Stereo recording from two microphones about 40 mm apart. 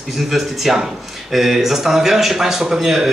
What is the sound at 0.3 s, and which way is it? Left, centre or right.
A man's voice, centre.